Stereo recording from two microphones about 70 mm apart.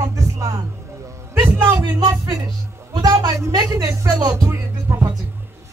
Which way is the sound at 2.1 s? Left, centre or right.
Right.